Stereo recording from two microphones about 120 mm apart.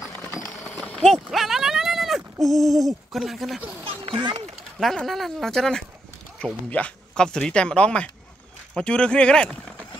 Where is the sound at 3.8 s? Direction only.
45° right (ahead or behind).